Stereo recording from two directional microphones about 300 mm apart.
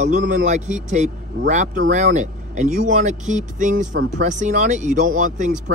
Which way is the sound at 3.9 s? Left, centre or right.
Right.